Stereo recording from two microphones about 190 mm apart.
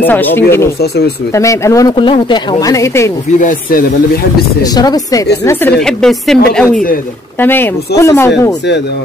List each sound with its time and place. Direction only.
0.0 s speech: 10° left (ahead or behind)
0.7 s speech: 60° left (ahead or behind)
1.3 s speech: 15° left (ahead or behind)
3.3 s speech: 45° left (ahead or behind)
4.7 s speech: 20° left (ahead or behind)